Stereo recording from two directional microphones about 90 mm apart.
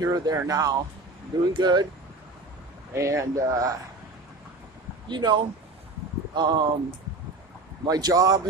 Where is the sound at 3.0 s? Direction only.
35° right (ahead or behind).